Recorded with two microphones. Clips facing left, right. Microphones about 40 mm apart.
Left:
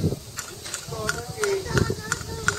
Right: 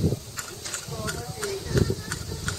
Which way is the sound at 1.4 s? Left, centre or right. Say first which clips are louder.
Left 3 dB; left.